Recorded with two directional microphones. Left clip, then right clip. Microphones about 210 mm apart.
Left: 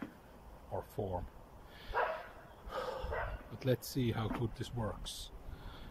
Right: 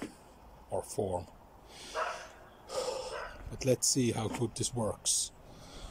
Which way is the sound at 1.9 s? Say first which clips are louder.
Left 1 dB; 30° left (ahead or behind).